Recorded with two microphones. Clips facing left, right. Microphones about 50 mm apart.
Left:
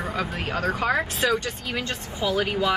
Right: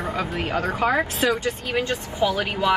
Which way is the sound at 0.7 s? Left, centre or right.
Right.